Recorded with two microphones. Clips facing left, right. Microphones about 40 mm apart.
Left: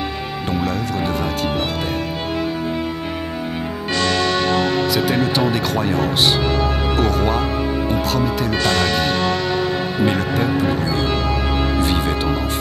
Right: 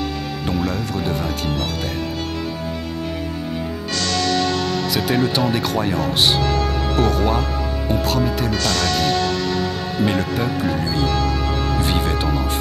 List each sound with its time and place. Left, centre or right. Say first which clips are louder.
0.7 s speech: left 2 dB; centre
3.9 s music: left 3 dB; left
4.9 s speech: left 1 dB; centre
6.4 s speech: left 1 dB; left
7.0 s speech: right 1 dB; centre
8.5 s music: left 4 dB; left
10.0 s speech: left 1 dB; centre